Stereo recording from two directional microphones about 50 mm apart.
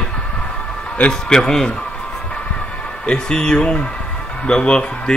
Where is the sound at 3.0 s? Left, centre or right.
Centre.